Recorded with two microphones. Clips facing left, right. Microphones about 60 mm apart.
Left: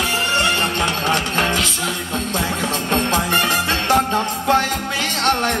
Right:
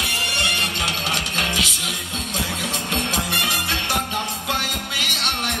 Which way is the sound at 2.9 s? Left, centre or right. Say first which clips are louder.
Left 6 dB; left.